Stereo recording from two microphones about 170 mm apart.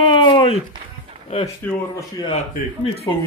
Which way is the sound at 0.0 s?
30° left (ahead or behind).